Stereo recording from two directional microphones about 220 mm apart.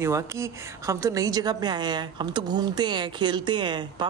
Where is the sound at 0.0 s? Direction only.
15° right (ahead or behind).